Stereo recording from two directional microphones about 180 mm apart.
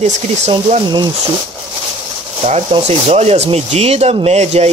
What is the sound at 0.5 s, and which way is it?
Speech, 40° right (ahead or behind).